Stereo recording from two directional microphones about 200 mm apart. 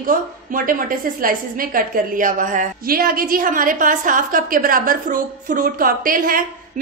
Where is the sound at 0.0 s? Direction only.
45° right (ahead or behind).